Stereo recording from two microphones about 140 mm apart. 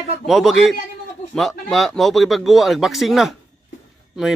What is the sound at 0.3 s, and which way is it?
Speech, centre (ahead or behind).